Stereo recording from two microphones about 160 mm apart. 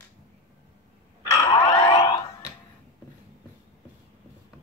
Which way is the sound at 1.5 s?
40° left (ahead or behind).